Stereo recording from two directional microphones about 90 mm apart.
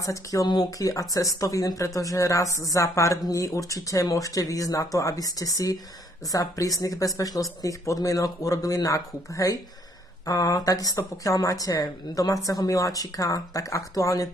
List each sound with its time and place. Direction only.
0.0 s a woman's voice: 40° left (ahead or behind)